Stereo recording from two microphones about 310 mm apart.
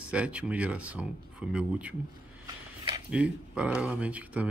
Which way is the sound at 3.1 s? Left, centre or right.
Centre.